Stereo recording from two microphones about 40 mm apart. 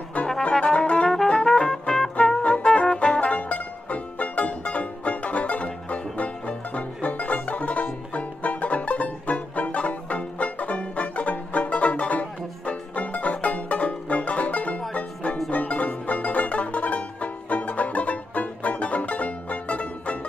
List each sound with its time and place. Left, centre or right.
0.4 s brass instrument: left
1.1 s music: centre
2.4 s music: left